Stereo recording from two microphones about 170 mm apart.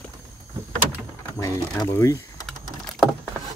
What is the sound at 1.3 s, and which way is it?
Typing, 20° left (ahead or behind).